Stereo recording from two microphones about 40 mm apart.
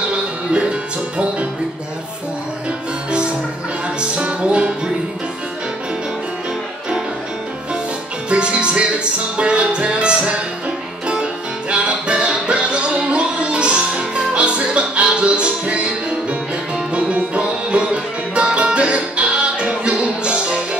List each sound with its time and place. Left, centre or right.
0.1 s music: right
4.1 s music: right
8.3 s music: right
11.7 s music: right